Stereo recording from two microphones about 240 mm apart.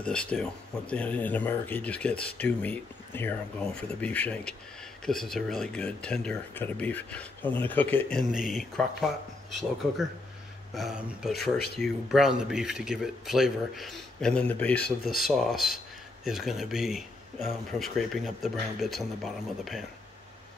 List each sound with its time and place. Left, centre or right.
0.0 s speech: centre
11.5 s speech: left
11.8 s speech: centre